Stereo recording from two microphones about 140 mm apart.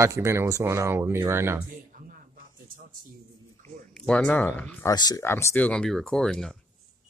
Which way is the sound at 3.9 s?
5° left (ahead or behind).